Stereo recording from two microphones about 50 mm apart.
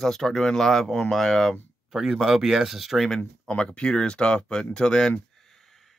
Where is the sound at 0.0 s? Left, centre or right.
Centre.